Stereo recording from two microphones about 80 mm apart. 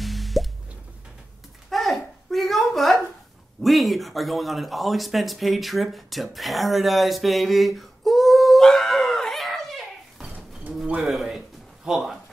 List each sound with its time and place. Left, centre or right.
0.0 s music: centre
1.7 s a sound: centre
3.6 s speech: centre